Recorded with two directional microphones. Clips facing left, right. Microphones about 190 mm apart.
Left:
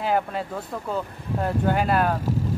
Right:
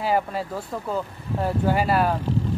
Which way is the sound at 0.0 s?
5° right (ahead or behind).